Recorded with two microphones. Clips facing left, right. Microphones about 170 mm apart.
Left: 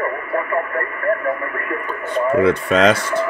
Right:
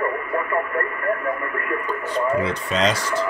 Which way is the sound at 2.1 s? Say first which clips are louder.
Left 7 dB; 55° left (ahead or behind).